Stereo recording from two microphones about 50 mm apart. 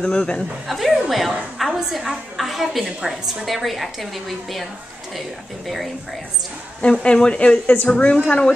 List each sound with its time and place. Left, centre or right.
0.0 s speech: centre
0.7 s a woman's voice: centre
6.8 s speech: centre
7.6 s a woman's voice: left
7.9 s speech: left